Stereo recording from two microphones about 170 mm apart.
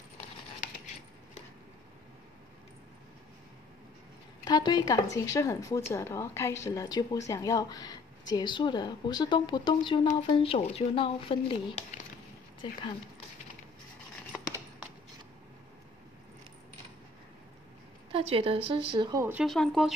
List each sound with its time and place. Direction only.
4.5 s a woman's voice: 25° left (ahead or behind)
14.3 s a sound: 5° right (ahead or behind)
18.1 s speech: 35° right (ahead or behind)
19.4 s speech: centre (ahead or behind)